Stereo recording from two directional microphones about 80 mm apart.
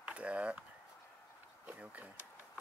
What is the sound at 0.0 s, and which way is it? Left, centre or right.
Speech, centre.